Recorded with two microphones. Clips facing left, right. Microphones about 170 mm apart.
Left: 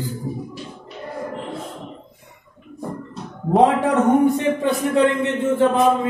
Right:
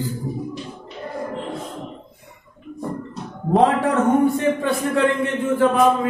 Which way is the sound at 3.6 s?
15° left (ahead or behind).